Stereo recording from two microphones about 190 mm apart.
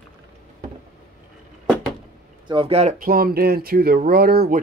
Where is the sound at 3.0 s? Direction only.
50° right (ahead or behind).